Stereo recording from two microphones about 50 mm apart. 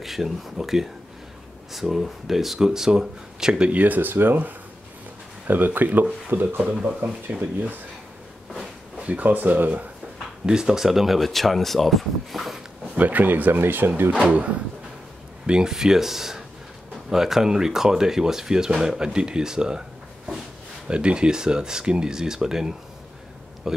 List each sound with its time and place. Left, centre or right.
0.0 s speech: centre
3.6 s speech: right
6.3 s speech: right
7.2 s speech: right
8.9 s a sound: right
9.2 s speech: right
10.4 s speech: centre
12.9 s speech: right
14.1 s speech: right
15.4 s speech: centre
20.9 s speech: centre